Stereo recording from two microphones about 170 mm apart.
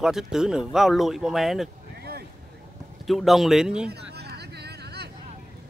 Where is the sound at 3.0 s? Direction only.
Centre (ahead or behind).